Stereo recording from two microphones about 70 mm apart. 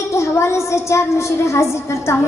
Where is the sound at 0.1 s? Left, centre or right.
Left.